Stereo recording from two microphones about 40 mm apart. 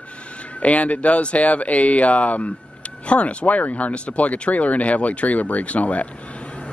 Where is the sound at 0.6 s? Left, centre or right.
Left.